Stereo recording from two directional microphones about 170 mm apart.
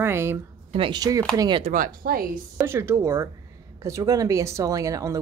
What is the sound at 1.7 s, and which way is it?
Speech, 55° right (ahead or behind).